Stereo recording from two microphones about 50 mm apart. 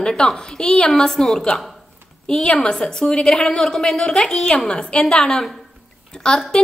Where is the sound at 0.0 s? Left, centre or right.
Centre.